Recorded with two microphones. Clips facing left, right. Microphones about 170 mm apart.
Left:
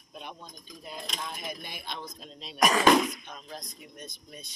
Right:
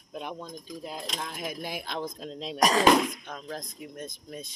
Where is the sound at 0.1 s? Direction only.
90° right.